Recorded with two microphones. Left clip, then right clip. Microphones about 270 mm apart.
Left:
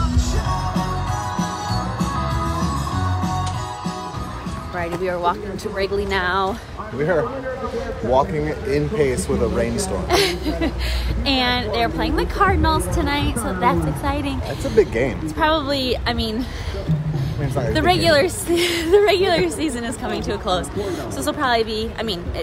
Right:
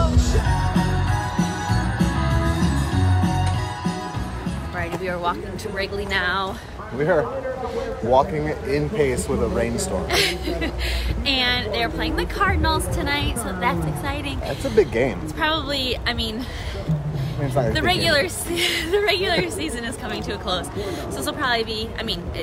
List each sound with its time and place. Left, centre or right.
1.3 s music: centre
4.7 s a woman's voice: centre
7.0 s speech: centre
10.0 s a woman's voice: centre
14.6 s speech: centre
15.3 s a woman's voice: centre
17.7 s a woman's voice: centre